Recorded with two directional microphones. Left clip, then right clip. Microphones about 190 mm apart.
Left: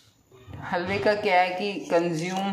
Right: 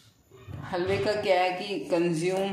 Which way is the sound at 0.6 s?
20° left (ahead or behind).